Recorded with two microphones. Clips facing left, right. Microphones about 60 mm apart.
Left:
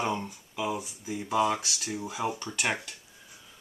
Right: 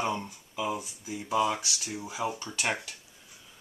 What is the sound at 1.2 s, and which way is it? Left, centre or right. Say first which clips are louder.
Speech: left 1 dB; left.